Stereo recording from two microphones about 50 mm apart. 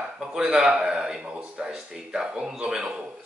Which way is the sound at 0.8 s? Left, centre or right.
Centre.